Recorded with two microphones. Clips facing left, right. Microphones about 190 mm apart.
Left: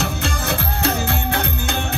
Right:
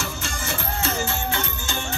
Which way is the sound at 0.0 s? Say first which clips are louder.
Left 7 dB; 65° left (ahead or behind).